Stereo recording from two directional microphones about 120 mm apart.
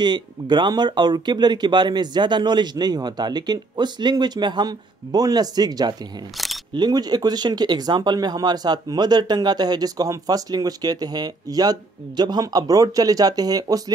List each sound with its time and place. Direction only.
0.0 s speech: 40° right (ahead or behind)
6.3 s single-lens reflex camera: centre (ahead or behind)
6.7 s speech: 35° right (ahead or behind)